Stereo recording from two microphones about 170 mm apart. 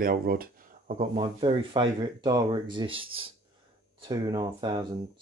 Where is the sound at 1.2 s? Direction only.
30° right (ahead or behind).